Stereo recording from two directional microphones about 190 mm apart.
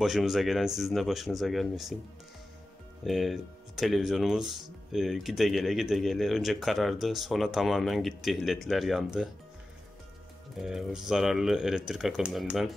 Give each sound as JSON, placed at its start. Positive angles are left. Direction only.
{"t": 0.0, "sound": "speech", "side_deg": 0}
{"t": 3.0, "sound": "speech", "side_deg": 0}
{"t": 10.6, "sound": "speech", "side_deg": 0}